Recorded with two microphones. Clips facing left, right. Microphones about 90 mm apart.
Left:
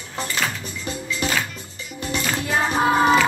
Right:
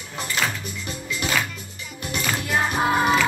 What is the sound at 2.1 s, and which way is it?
Music, 25° left (ahead or behind).